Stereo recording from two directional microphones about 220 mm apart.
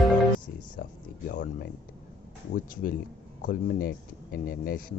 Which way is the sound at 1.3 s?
45° left (ahead or behind).